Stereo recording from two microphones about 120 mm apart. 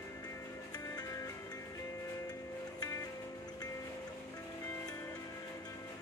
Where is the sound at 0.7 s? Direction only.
30° left (ahead or behind).